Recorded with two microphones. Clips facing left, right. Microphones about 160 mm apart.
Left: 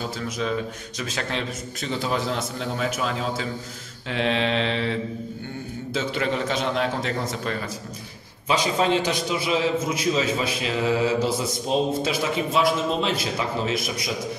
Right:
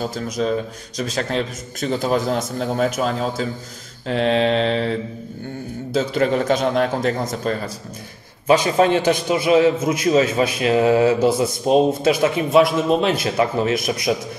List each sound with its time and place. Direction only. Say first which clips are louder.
0.0 s a man's voice: right 5 dB; 40° right (ahead or behind)
4.1 s mantra: right 6 dB; 40° right (ahead or behind)
5.9 s a man's voice: right 7 dB; 40° right (ahead or behind)
8.5 s a man's voice: right 6 dB; 55° right (ahead or behind)